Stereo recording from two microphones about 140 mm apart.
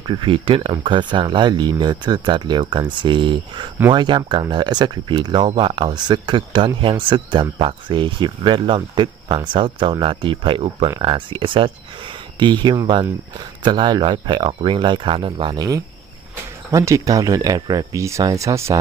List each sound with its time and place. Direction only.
0.0 s speech: 35° right (ahead or behind)